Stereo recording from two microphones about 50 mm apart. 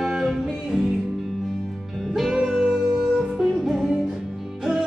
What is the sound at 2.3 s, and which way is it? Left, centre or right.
Music, centre.